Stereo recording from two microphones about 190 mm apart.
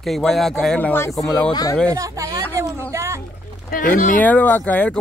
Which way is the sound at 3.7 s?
45° left (ahead or behind).